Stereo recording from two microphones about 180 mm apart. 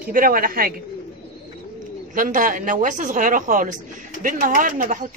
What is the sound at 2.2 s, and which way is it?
Speech, 50° right (ahead or behind).